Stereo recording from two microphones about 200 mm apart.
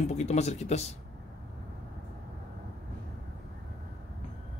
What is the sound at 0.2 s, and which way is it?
Speech, 35° left (ahead or behind).